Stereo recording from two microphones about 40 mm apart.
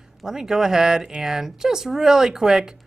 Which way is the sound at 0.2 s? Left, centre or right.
Centre.